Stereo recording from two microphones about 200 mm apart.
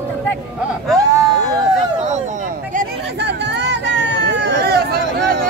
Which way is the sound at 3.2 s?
60° right (ahead or behind).